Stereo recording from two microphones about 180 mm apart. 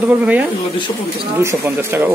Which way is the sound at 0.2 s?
10° right (ahead or behind).